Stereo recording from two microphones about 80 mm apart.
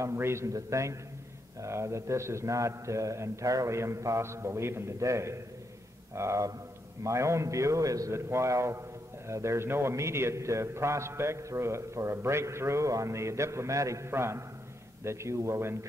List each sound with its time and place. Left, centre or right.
0.0 s a man's voice: right